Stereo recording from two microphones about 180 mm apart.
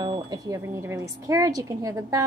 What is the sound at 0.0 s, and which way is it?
A woman's voice, 25° right (ahead or behind).